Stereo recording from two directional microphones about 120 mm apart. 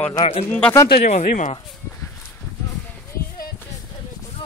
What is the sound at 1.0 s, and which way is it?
Speech, 90° left.